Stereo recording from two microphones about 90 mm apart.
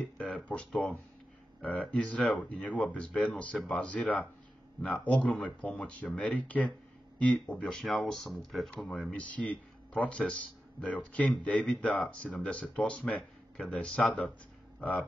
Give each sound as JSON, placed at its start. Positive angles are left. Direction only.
{"t": 0.0, "sound": "speech", "side_deg": 15}
{"t": 8.6, "sound": "speech", "side_deg": 10}